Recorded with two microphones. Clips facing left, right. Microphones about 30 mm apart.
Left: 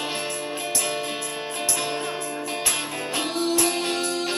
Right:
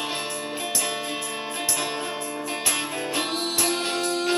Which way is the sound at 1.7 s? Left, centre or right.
Centre.